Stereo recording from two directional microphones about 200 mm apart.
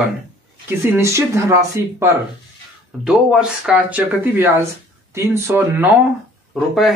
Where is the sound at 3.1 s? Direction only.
5° right (ahead or behind).